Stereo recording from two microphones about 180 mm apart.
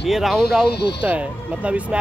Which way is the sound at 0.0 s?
Centre (ahead or behind).